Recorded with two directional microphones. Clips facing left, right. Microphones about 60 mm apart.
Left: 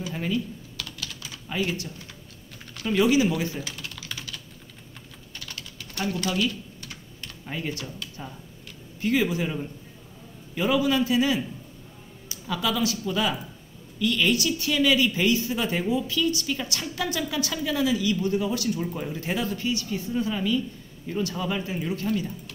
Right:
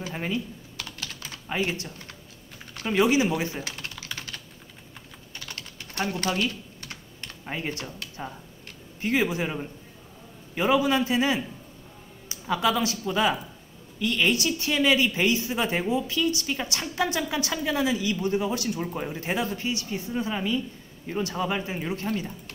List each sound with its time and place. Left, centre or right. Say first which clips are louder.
0.0 s typing: left 2 dB; right
1.6 s a woman's voice: left 1 dB; right
4.0 s typing: even; right
5.3 s typing: right 1 dB; right
5.9 s speech: even; right
6.2 s typing: left 1 dB; right
9.0 s a woman's voice: left 1 dB; right